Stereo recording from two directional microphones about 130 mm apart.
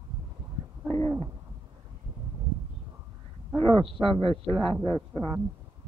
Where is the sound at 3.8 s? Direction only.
40° right (ahead or behind).